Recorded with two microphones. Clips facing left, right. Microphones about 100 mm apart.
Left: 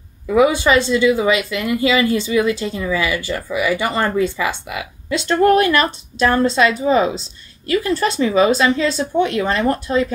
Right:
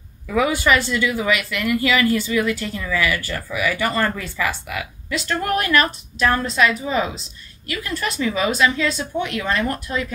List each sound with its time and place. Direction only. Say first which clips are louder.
0.3 s speech: left 5 dB; 25° left (ahead or behind)